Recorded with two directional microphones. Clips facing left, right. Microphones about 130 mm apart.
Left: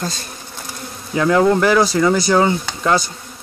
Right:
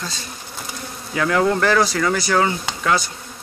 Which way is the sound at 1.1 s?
20° left (ahead or behind).